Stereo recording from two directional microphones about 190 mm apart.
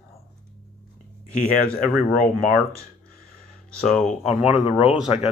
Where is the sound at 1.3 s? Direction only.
50° left (ahead or behind).